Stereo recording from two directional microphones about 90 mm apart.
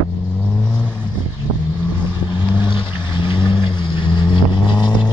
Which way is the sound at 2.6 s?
65° left (ahead or behind).